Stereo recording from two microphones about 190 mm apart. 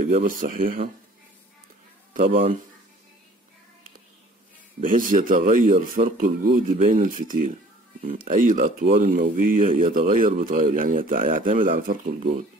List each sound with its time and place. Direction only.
0.1 s speech: 45° right (ahead or behind)
4.7 s speech: 45° right (ahead or behind)